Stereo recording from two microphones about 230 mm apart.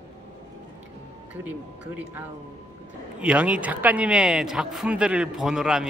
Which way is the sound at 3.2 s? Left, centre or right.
Centre.